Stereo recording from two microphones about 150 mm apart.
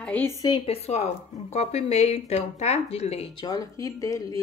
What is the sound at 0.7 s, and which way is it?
Speech, 45° left (ahead or behind).